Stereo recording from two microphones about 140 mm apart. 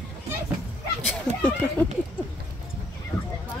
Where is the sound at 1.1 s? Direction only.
10° left (ahead or behind).